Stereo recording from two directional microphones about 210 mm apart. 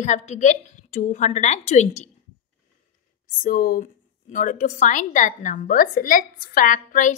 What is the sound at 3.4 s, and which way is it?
A woman's voice, 40° left (ahead or behind).